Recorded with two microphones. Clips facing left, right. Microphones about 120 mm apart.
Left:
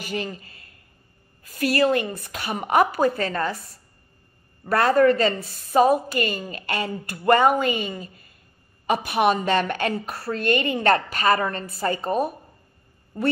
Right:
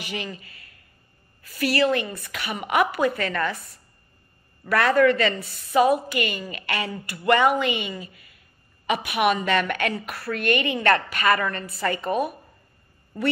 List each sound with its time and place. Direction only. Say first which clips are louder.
0.0 s a woman's voice: left 3 dB; 45° left (ahead or behind); by 3.5 s 30° left (ahead or behind)
4.6 s a woman's voice: left 1 dB; 35° left (ahead or behind)
9.7 s speech: left 1 dB; 55° right (ahead or behind)
9.9 s a woman's voice: left 2 dB; 30° left (ahead or behind)